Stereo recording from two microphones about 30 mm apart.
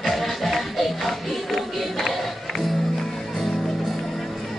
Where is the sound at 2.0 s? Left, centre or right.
Centre.